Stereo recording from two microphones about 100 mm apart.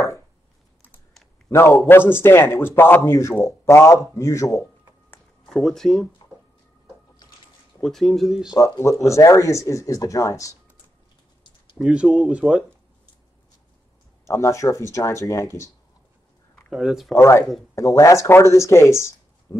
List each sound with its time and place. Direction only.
1.5 s speech: 25° left (ahead or behind)
5.5 s speech: 5° left (ahead or behind)
7.8 s speech: centre (ahead or behind)
8.5 s speech: 30° left (ahead or behind)
11.8 s speech: 5° right (ahead or behind)
14.2 s speech: 30° left (ahead or behind)
16.7 s speech: centre (ahead or behind)
17.1 s speech: 25° left (ahead or behind)